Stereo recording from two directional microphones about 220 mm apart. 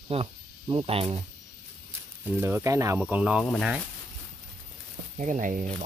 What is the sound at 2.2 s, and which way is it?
Speech, 10° right (ahead or behind).